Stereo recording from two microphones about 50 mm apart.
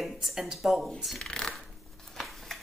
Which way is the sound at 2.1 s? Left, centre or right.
Centre.